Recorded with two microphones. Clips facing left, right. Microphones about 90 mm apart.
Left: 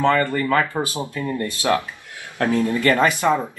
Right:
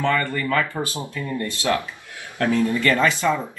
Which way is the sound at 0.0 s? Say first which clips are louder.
Left 4 dB; 35° left (ahead or behind).